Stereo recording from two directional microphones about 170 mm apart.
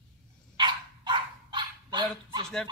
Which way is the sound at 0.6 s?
25° right (ahead or behind).